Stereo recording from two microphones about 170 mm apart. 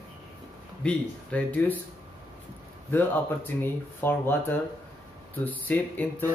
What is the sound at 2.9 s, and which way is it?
Speech, 10° left (ahead or behind).